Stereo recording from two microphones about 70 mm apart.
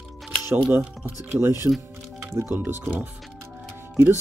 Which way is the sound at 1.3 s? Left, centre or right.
Right.